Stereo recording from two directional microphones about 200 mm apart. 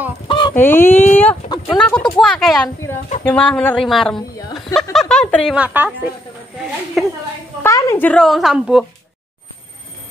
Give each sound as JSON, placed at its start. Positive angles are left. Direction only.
{"t": 0.3, "sound": "fowl", "side_deg": 25}
{"t": 0.6, "sound": "a sound", "side_deg": 10}
{"t": 1.7, "sound": "speech", "side_deg": 5}
{"t": 7.0, "sound": "speech", "side_deg": 0}
{"t": 7.6, "sound": "a woman's voice", "side_deg": 15}